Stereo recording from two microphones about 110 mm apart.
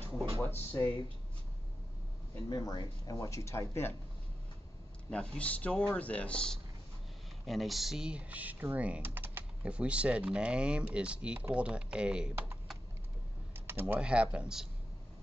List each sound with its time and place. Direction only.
0.4 s speech: 20° left (ahead or behind)
2.5 s speech: 40° left (ahead or behind); by 3.9 s 25° left (ahead or behind)
5.1 s speech: 10° left (ahead or behind); by 12.3 s 10° right (ahead or behind)
13.7 s speech: 20° right (ahead or behind)